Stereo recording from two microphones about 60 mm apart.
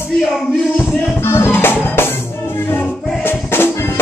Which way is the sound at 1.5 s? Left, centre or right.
Left.